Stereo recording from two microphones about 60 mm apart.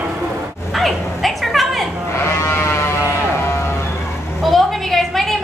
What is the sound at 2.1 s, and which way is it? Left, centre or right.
Sheep, left.